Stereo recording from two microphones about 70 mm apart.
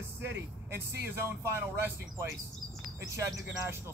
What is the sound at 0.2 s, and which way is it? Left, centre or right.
Speech, right.